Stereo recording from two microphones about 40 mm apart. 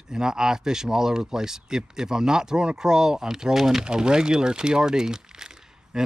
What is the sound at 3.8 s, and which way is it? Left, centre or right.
Speech, centre.